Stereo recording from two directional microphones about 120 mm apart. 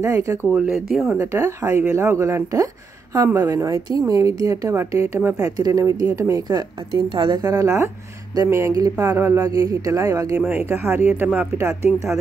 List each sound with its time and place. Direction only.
0.0 s speech: 25° right (ahead or behind)
0.5 s speech: 5° right (ahead or behind)
1.1 s speech: 25° right (ahead or behind)
7.1 s speech: 45° right (ahead or behind)
7.3 s speech: 30° right (ahead or behind)
10.4 s speech: 15° right (ahead or behind)